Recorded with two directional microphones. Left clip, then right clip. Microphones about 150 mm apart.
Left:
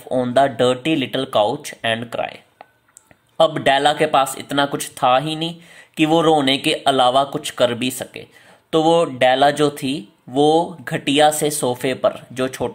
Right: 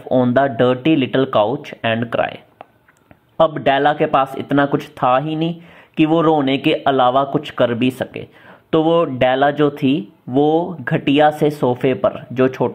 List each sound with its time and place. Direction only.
0.1 s speech: 25° left (ahead or behind)